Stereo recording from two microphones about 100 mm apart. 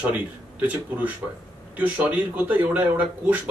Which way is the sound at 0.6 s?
15° right (ahead or behind).